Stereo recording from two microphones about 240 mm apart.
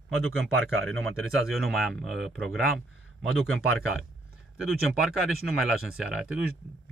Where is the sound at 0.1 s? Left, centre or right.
Right.